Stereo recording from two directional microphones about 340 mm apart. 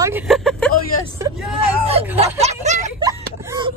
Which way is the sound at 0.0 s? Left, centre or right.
Centre.